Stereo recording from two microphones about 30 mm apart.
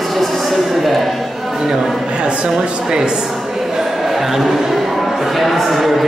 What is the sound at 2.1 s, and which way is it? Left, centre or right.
Speech, right.